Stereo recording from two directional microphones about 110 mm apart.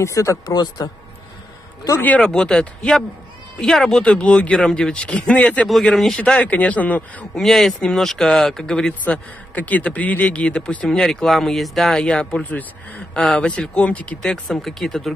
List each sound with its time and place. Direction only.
0.0 s speech: 30° left (ahead or behind)
2.0 s a man's voice: 10° left (ahead or behind)